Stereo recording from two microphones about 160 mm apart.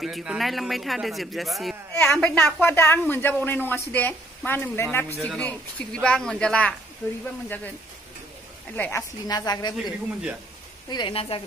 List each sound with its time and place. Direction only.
0.0 s a woman's voice: 5° right (ahead or behind)
8.7 s a woman's voice: 10° left (ahead or behind)
9.3 s speech: 25° left (ahead or behind)